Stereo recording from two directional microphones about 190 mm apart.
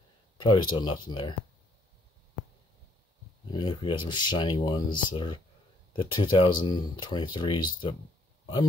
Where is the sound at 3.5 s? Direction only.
25° left (ahead or behind).